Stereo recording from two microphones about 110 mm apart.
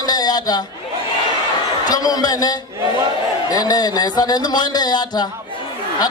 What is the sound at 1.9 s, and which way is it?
Speech, 35° left (ahead or behind).